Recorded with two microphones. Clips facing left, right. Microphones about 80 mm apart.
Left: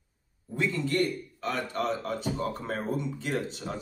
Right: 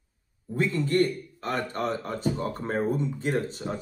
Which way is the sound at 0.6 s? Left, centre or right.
Right.